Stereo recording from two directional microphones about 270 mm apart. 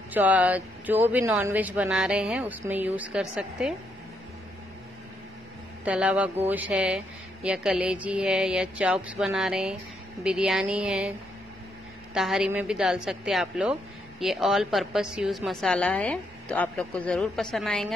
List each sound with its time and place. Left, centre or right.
0.1 s a woman's voice: centre
5.9 s a woman's voice: centre